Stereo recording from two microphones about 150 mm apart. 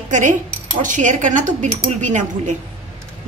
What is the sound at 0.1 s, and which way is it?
Speech, 55° right (ahead or behind).